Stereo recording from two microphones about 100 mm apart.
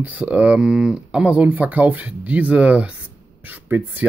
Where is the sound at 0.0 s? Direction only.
15° right (ahead or behind).